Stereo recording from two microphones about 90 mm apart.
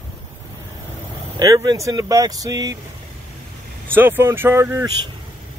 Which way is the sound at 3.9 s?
25° right (ahead or behind).